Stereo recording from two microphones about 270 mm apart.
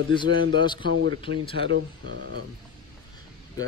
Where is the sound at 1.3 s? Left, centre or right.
Right.